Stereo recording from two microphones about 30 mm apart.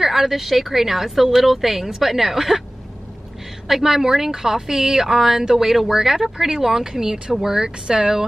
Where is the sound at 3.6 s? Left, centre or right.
Centre.